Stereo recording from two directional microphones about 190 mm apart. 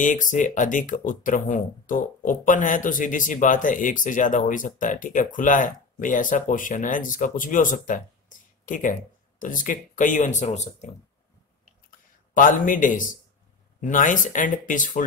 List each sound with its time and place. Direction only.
0.0 s speech: 40° left (ahead or behind)
12.4 s speech: 45° left (ahead or behind)